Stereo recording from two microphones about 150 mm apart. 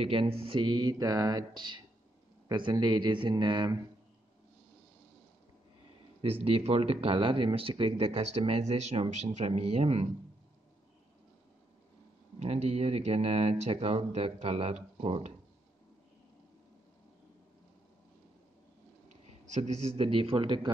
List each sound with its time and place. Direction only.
0.0 s speech: 40° right (ahead or behind)
6.4 s speech: 40° right (ahead or behind)
12.4 s speech: 45° right (ahead or behind)
19.5 s speech: 50° right (ahead or behind)
20.0 s speech: 40° right (ahead or behind)